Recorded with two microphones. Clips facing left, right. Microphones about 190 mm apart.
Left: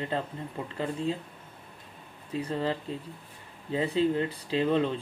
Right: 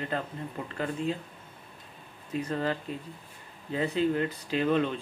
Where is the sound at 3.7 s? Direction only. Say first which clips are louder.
Left 1 dB; 25° left (ahead or behind).